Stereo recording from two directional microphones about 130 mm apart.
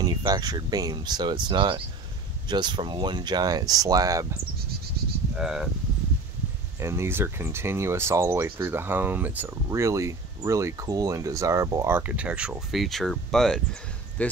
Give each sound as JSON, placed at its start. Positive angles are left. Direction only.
{"t": 0.0, "sound": "speech", "side_deg": -30}
{"t": 5.3, "sound": "speech", "side_deg": -5}
{"t": 6.8, "sound": "speech", "side_deg": -20}
{"t": 9.7, "sound": "speech", "side_deg": -25}